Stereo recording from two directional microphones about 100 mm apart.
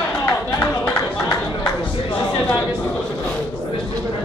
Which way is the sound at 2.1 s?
15° left (ahead or behind).